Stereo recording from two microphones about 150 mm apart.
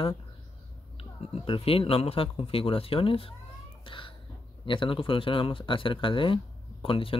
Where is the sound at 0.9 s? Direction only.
40° left (ahead or behind).